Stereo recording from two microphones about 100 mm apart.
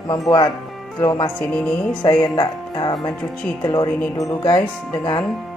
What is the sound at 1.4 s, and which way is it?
Speech, 10° left (ahead or behind).